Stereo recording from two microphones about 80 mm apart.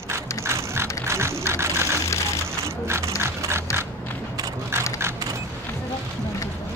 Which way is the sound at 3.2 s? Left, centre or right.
Right.